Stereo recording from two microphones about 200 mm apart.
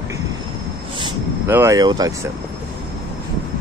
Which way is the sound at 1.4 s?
15° right (ahead or behind).